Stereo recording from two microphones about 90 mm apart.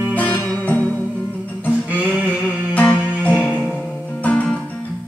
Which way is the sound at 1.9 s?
15° right (ahead or behind).